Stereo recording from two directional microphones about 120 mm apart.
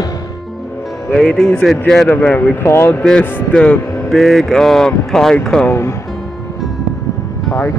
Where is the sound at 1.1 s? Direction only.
5° left (ahead or behind).